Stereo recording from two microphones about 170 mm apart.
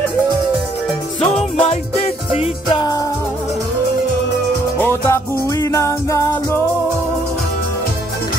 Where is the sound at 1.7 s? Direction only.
40° left (ahead or behind).